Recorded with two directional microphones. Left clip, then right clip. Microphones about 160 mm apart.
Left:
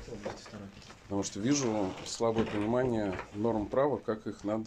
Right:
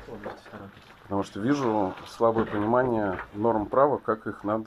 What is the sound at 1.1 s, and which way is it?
Speech, 15° left (ahead or behind).